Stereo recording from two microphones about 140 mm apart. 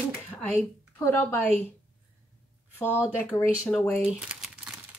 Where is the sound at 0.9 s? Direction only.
15° left (ahead or behind).